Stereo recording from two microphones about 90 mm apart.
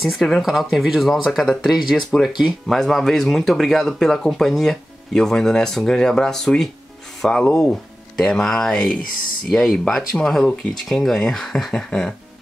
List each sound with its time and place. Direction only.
0.0 s speech: centre (ahead or behind)